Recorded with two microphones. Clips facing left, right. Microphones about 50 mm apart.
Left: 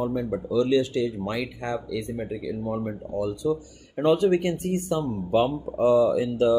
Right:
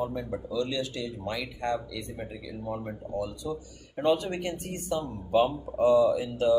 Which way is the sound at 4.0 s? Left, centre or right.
Left.